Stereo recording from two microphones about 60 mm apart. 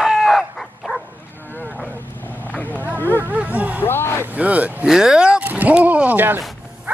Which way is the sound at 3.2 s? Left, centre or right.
Right.